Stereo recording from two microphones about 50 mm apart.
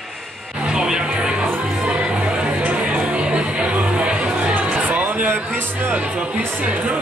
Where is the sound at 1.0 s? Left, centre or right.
Right.